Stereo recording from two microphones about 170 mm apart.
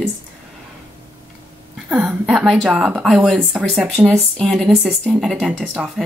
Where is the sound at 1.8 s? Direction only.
5° right (ahead or behind).